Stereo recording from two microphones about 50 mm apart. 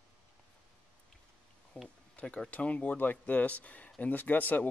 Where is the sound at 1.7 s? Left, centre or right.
Left.